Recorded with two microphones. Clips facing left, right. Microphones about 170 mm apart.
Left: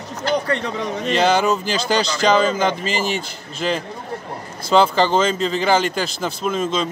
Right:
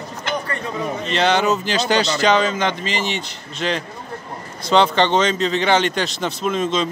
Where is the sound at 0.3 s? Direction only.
35° left (ahead or behind).